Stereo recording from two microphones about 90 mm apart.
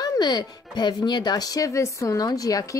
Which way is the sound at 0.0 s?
50° left (ahead or behind).